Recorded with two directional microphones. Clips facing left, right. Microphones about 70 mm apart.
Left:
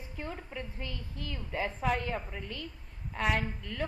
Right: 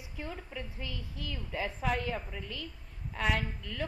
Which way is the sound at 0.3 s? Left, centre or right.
Centre.